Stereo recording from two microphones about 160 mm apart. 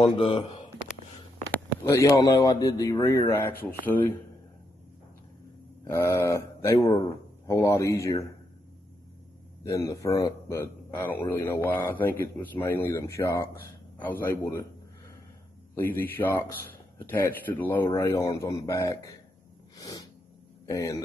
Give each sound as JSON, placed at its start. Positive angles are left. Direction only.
{"t": 0.0, "sound": "speech", "side_deg": 30}
{"t": 1.5, "sound": "speech", "side_deg": 15}
{"t": 5.9, "sound": "speech", "side_deg": 20}
{"t": 9.6, "sound": "speech", "side_deg": 20}
{"t": 15.7, "sound": "speech", "side_deg": 15}
{"t": 19.8, "sound": "sneeze", "side_deg": 25}
{"t": 20.6, "sound": "speech", "side_deg": 20}